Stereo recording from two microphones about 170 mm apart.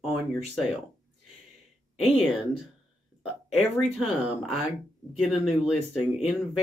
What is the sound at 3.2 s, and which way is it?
Speech, centre (ahead or behind).